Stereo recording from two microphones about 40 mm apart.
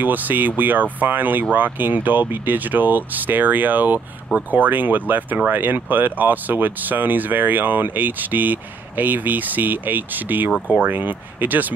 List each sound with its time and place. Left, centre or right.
0.0 s speech: right